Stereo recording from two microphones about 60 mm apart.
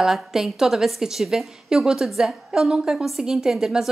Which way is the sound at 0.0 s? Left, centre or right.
Centre.